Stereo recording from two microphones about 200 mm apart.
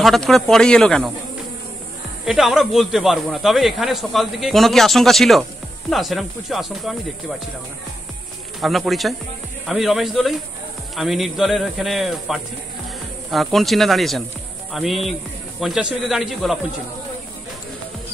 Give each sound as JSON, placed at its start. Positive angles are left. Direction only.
{"t": 0.0, "sound": "speech", "side_deg": 0}
{"t": 2.2, "sound": "speech", "side_deg": 0}
{"t": 8.5, "sound": "speech", "side_deg": 0}